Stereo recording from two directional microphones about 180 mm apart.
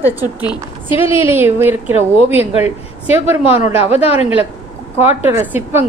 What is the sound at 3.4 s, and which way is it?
A woman's voice, 35° left (ahead or behind).